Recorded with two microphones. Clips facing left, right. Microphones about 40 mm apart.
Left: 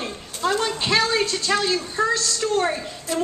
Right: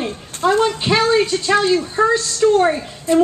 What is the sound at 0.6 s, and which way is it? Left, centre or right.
A woman's voice, centre.